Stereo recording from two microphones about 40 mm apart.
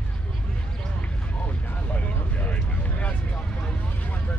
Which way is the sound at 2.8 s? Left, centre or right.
Left.